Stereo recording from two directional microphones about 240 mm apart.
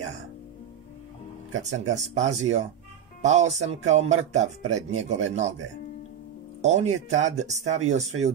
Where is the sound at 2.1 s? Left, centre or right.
Right.